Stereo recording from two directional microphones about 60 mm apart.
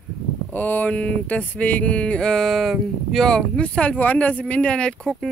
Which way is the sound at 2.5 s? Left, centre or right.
Centre.